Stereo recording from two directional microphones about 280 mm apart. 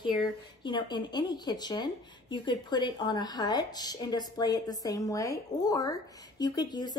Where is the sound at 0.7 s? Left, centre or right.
Centre.